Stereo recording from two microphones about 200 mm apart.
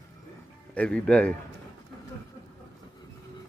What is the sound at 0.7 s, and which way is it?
Speech, 5° left (ahead or behind).